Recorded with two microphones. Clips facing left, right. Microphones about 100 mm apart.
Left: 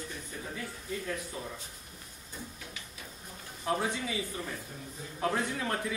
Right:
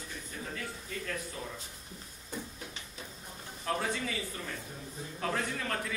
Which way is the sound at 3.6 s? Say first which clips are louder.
Left 2 dB; 15° left (ahead or behind).